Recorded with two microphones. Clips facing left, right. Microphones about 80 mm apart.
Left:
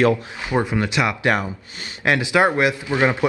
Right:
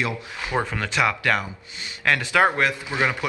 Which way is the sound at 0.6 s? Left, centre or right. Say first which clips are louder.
Left 2 dB; centre.